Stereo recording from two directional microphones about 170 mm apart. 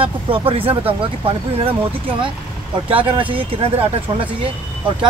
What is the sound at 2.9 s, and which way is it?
Speech, 30° right (ahead or behind).